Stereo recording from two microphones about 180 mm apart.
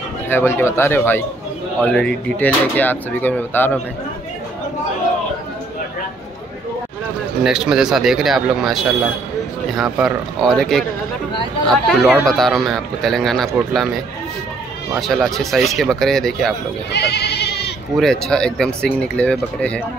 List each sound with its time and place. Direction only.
0.3 s speech: 10° left (ahead or behind)
7.4 s speech: 5° right (ahead or behind)
16.9 s goat: 65° left (ahead or behind)
17.9 s speech: centre (ahead or behind)